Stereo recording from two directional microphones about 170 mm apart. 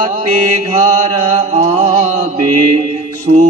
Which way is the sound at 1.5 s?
35° right (ahead or behind).